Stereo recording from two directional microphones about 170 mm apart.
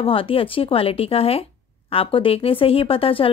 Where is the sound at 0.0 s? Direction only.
30° left (ahead or behind).